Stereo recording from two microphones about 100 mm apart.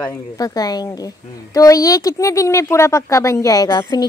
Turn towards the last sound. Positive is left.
turn(degrees=40)  # may be behind; listen again after turning